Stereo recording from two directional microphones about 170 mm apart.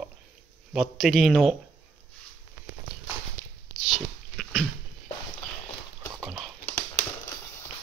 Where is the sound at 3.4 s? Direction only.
10° right (ahead or behind).